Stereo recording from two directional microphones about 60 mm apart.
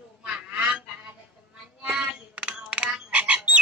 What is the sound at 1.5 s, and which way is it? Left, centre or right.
Frog, centre.